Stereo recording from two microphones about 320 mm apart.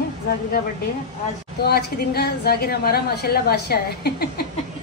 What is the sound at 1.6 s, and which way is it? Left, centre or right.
A woman's voice, left.